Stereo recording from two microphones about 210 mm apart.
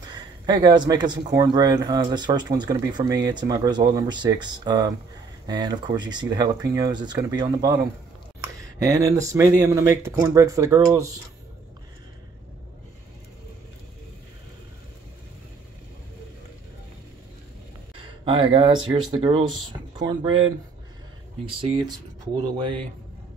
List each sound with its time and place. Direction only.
0.1 s speech: 20° right (ahead or behind)
18.2 s speech: 25° right (ahead or behind)